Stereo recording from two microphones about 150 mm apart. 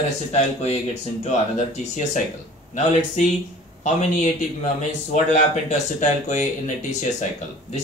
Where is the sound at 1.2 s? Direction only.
50° left (ahead or behind).